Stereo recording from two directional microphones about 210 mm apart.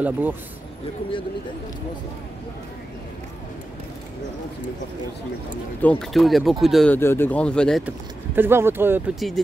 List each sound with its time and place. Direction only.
0.0 s speech: 10° right (ahead or behind)
5.8 s speech: 5° left (ahead or behind)
8.4 s speech: 10° right (ahead or behind)